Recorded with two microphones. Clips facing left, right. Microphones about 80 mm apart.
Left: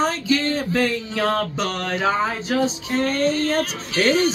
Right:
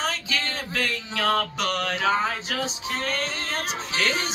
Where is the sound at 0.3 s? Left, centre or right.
Left.